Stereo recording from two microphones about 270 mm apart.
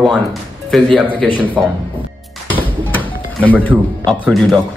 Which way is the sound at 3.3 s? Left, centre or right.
Centre.